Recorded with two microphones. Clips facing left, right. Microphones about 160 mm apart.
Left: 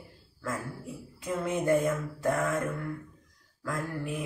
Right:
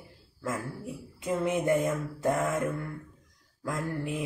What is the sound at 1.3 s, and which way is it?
Mantra, 20° right (ahead or behind).